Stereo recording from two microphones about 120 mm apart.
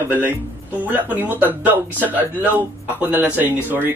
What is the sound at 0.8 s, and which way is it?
Speech, 15° right (ahead or behind).